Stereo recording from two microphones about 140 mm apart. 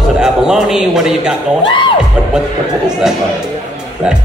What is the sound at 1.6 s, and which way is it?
Speech, 35° left (ahead or behind).